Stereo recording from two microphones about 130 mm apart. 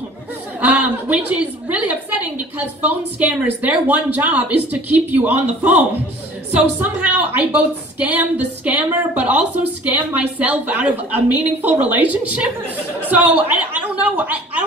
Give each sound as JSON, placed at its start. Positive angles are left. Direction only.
{"t": 0.6, "sound": "a woman's voice", "side_deg": -15}
{"t": 14.0, "sound": "gargling", "side_deg": -10}